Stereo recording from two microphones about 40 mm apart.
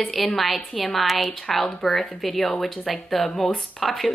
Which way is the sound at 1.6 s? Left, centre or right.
Left.